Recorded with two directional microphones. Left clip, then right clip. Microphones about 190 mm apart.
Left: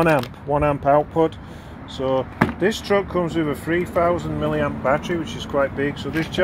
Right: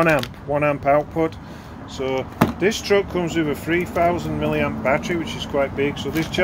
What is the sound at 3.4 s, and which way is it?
Speech, 15° left (ahead or behind).